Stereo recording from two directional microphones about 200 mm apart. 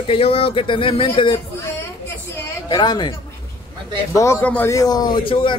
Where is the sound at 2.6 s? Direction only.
20° left (ahead or behind).